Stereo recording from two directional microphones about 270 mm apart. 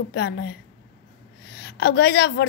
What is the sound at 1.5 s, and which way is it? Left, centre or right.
Speech, left.